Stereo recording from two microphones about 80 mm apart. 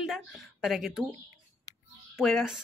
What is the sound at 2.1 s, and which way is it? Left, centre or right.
Speech, centre.